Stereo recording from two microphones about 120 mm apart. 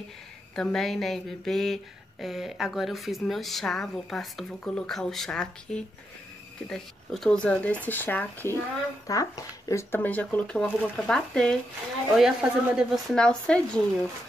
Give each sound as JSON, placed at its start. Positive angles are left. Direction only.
{"t": 0.6, "sound": "speech", "side_deg": 5}
{"t": 9.0, "sound": "speech", "side_deg": 30}
{"t": 12.2, "sound": "speech", "side_deg": -5}
{"t": 13.1, "sound": "speech", "side_deg": 5}